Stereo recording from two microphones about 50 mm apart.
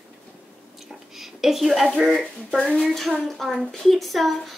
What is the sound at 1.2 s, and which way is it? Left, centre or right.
A woman's voice, centre.